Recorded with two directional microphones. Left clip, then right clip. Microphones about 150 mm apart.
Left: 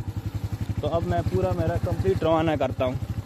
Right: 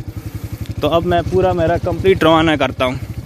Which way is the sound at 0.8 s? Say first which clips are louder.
Right 12 dB; 65° right (ahead or behind).